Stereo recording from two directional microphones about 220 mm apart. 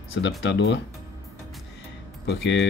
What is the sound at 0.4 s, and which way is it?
Speech, 50° left (ahead or behind).